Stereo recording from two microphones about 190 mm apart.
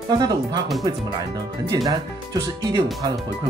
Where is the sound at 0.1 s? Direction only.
20° right (ahead or behind).